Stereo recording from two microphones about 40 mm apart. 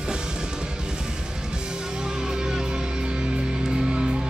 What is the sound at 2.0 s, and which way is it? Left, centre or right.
Music, centre.